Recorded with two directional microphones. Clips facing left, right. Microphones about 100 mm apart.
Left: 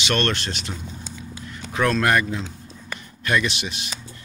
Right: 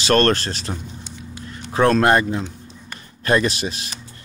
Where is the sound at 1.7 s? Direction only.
30° right (ahead or behind).